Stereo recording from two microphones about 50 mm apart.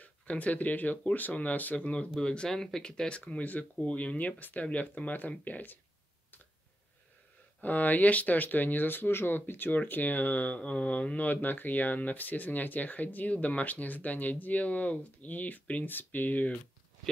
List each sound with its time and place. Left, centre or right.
0.0 s speech: left
2.1 s speech: centre; by 5.8 s left
7.6 s speech: left